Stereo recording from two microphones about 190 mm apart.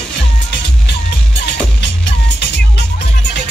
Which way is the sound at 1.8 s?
65° left (ahead or behind).